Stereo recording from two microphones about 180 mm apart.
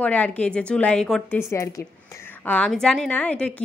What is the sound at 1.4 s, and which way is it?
A woman's voice, 15° left (ahead or behind).